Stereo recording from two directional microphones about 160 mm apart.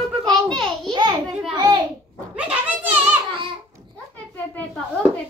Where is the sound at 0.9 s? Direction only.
30° right (ahead or behind).